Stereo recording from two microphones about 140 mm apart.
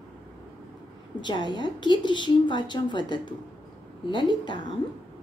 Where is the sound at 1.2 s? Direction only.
30° left (ahead or behind).